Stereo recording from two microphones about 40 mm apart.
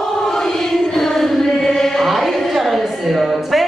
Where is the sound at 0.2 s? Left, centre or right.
Centre.